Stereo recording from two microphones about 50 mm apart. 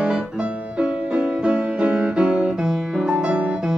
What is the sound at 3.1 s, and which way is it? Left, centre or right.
Music, right.